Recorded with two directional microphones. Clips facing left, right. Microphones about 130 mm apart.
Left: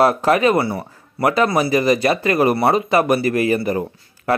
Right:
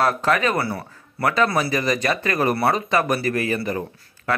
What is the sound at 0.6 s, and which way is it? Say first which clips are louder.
Speech: left 5 dB; 20° left (ahead or behind).